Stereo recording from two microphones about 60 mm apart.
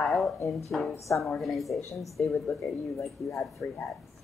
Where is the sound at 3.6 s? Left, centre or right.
Left.